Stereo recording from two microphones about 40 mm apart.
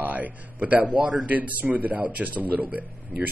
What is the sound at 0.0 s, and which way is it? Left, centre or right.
A man's voice, right.